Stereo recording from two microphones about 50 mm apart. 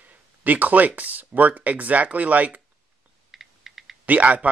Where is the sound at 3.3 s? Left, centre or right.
Centre.